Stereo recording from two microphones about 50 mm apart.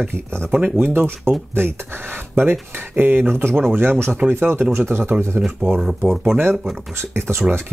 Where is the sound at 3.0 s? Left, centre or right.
Right.